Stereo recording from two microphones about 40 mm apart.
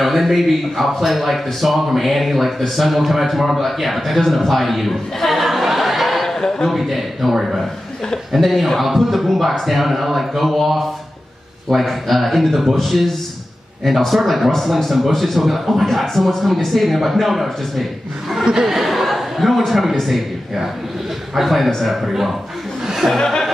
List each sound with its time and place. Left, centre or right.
0.0 s speech: centre
6.2 s chuckle: centre
6.7 s speech: centre
18.4 s speech: right
18.7 s a man's voice: centre
22.8 s chuckle: centre
23.1 s speech: centre